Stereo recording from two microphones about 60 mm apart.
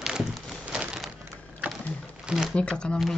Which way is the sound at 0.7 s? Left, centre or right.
Centre.